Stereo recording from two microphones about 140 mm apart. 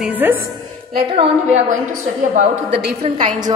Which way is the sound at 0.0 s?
10° right (ahead or behind).